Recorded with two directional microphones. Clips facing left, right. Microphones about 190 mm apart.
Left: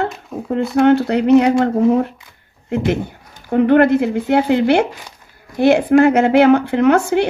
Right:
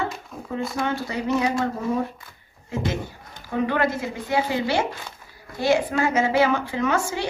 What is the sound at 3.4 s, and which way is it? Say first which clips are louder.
A woman's voice: left 11 dB; 60° left (ahead or behind).